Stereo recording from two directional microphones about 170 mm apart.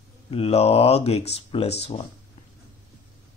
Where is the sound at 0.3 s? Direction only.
35° left (ahead or behind).